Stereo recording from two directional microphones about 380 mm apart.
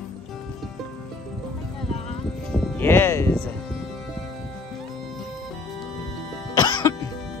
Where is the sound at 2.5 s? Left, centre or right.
Centre.